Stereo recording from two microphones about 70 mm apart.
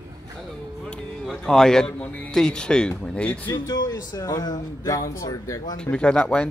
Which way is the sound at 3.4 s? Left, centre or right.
Left.